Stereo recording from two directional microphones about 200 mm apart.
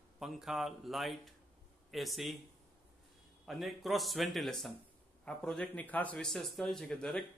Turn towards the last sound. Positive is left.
turn(degrees=5)  # may be behind; listen again after turning